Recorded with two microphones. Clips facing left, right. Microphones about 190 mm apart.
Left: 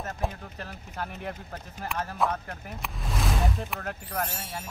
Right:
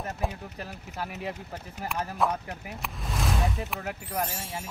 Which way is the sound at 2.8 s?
Centre (ahead or behind).